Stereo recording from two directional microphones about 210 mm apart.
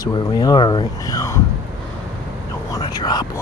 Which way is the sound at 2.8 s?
20° left (ahead or behind).